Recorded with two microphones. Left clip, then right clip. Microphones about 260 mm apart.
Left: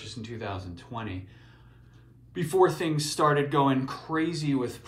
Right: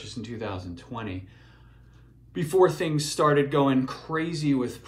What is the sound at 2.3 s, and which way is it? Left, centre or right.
Speech, centre.